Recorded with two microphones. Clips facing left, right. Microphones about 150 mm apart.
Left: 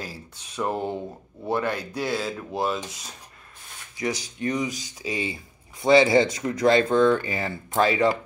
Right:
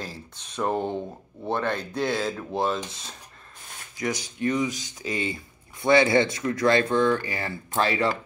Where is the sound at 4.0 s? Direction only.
35° left (ahead or behind).